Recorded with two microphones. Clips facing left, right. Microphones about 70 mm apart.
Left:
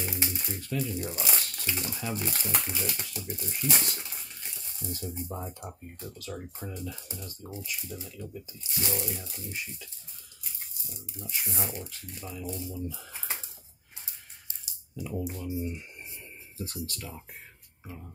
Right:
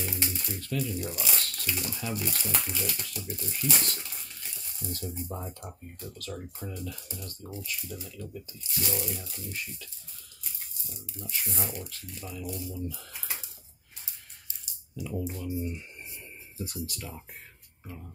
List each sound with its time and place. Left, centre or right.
0.0 s music: centre
1.4 s speech: centre
3.7 s a sound: centre
5.6 s speech: centre
10.9 s speech: centre
15.0 s speech: centre
16.5 s speech: centre